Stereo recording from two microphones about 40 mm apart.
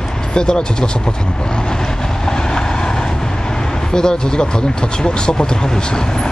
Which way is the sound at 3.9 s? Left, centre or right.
Centre.